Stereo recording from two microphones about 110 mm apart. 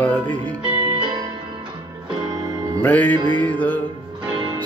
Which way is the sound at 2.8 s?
15° left (ahead or behind).